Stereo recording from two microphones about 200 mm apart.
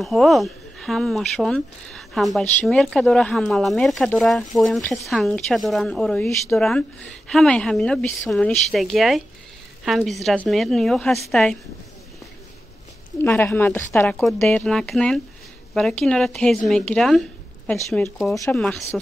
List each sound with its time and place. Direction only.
0.0 s speech: centre (ahead or behind)
13.2 s speech: 10° left (ahead or behind)
17.8 s speech: 15° left (ahead or behind)
18.6 s speech: centre (ahead or behind)